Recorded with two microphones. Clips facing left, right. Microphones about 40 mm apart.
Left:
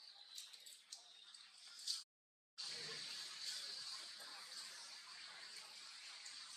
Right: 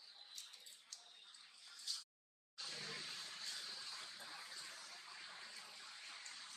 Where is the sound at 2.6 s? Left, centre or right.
Right.